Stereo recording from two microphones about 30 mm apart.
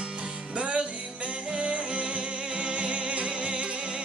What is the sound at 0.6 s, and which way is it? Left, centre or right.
Music, right.